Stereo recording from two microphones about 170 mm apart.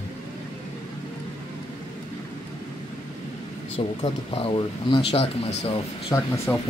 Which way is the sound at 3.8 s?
30° left (ahead or behind).